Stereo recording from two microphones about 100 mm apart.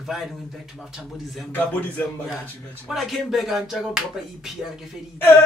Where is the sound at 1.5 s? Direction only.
15° left (ahead or behind).